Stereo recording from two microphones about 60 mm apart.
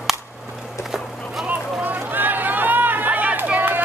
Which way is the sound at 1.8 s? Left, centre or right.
Right.